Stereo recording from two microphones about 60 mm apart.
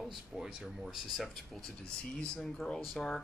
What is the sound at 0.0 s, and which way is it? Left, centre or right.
Speech, centre.